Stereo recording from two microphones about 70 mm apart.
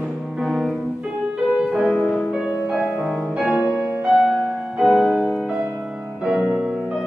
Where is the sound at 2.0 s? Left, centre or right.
Centre.